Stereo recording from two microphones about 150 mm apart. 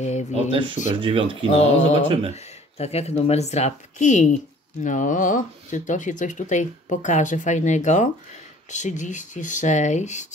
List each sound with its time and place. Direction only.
0.0 s speech: 50° left (ahead or behind)
0.3 s speech: 35° right (ahead or behind)
1.4 s speech: 45° left (ahead or behind)
2.0 s speech: 35° right (ahead or behind)
2.3 s speech: 45° left (ahead or behind)